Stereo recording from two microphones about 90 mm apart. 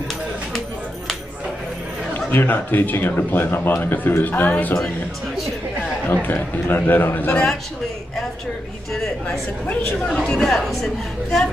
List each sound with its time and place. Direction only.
2.1 s speech: 20° left (ahead or behind)
6.1 s speech: 20° left (ahead or behind)
8.9 s a woman's voice: 5° left (ahead or behind)